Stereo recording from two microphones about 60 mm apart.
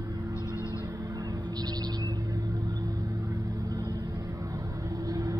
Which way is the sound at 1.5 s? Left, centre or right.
Right.